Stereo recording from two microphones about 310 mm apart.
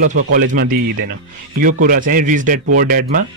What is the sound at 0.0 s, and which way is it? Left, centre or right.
Speech, right.